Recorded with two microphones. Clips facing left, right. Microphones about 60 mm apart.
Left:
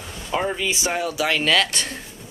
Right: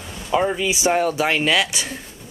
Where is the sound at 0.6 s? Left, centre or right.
Centre.